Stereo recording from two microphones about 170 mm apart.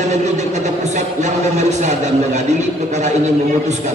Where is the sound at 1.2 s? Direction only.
45° right (ahead or behind).